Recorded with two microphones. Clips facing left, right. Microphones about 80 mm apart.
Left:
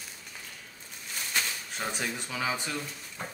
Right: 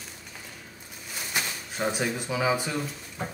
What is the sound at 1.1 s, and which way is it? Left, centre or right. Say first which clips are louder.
Speech: right 1 dB; centre.